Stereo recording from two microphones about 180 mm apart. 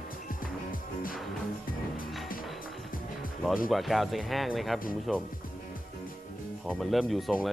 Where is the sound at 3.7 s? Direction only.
Centre (ahead or behind).